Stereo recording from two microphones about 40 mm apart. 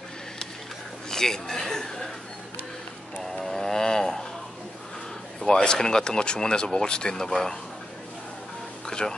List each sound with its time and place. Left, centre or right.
1.1 s chuckle: centre
3.2 s a sound: centre
5.4 s speech: centre
8.8 s music: centre